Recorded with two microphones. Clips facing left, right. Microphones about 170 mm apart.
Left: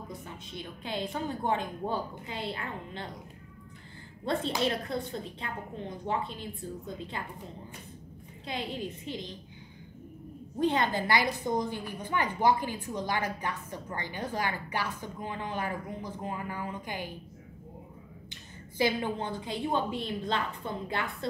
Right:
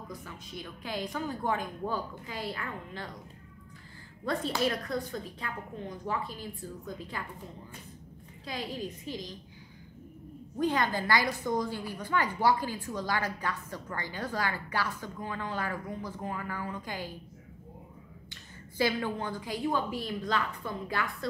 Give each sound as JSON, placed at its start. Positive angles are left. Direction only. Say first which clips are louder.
{"t": 0.1, "sound": "a woman's voice", "louder": "left 1 dB", "side_deg": 25}
{"t": 4.2, "sound": "a woman's voice", "louder": "left 1 dB", "side_deg": 25}
{"t": 8.5, "sound": "a woman's voice", "louder": "left 1 dB", "side_deg": 25}
{"t": 10.6, "sound": "a woman's voice", "louder": "left 1 dB", "side_deg": 25}
{"t": 18.8, "sound": "a woman's voice", "louder": "left 1 dB", "side_deg": 20}